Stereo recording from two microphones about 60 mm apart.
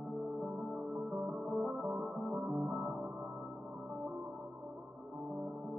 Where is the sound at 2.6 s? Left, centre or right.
Right.